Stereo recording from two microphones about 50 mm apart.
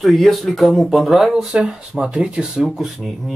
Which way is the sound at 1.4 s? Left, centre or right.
Centre.